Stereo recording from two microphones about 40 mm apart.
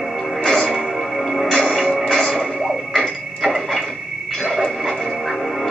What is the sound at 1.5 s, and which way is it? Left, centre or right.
Music, centre.